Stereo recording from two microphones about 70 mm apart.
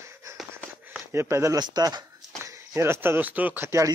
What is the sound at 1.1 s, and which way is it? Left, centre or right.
Speech, right.